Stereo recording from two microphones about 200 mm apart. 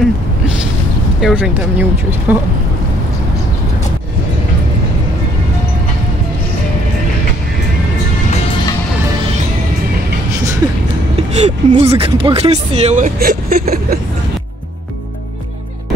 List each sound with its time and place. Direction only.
1.2 s speech: 5° right (ahead or behind)
11.3 s speech: 35° right (ahead or behind)